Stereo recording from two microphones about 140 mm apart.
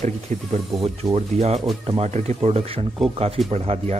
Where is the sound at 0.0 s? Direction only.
45° right (ahead or behind).